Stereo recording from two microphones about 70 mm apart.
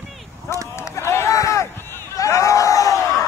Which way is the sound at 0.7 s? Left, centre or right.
Left.